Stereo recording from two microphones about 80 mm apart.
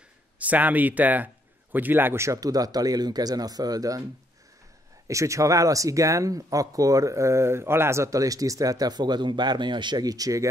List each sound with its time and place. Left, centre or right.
0.4 s a man's voice: centre; by 4.0 s right
5.0 s speech: right